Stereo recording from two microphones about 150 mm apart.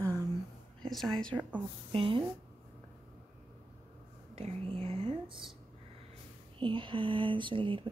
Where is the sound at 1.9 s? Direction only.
35° right (ahead or behind).